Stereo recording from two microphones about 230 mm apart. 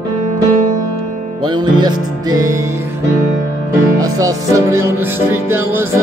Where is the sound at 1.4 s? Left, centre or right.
Centre.